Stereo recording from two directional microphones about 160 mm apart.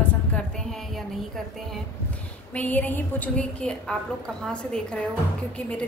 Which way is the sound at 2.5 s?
10° left (ahead or behind).